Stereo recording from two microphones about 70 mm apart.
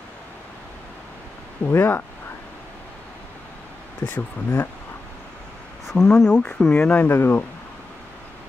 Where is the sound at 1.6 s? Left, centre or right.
Left.